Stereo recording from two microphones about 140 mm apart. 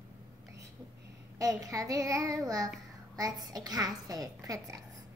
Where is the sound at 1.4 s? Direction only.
25° right (ahead or behind).